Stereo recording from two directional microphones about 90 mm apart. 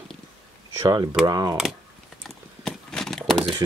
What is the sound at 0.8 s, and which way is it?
Speech, 40° right (ahead or behind).